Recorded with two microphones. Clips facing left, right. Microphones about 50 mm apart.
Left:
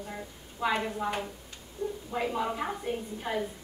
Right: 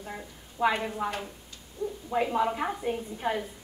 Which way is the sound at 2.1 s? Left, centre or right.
Centre.